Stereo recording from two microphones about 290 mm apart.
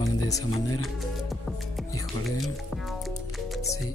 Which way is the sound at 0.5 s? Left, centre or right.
Left.